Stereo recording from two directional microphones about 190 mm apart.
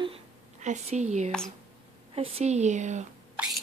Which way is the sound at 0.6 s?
35° right (ahead or behind).